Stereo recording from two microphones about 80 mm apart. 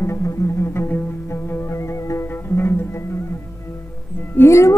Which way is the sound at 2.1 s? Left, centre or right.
Left.